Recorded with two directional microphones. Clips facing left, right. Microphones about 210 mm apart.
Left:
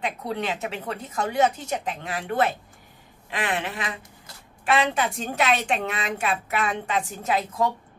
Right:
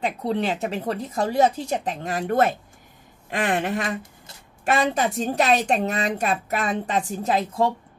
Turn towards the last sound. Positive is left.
turn(degrees=-30)  # may be behind; listen again after turning